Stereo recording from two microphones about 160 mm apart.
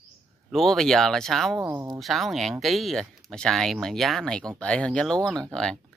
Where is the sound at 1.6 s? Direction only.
20° right (ahead or behind).